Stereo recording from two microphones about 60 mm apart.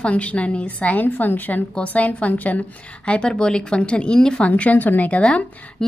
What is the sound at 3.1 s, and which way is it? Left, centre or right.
A woman's voice, centre.